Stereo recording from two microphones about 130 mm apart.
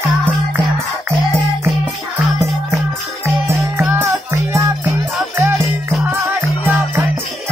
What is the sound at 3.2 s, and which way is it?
Music, 20° right (ahead or behind).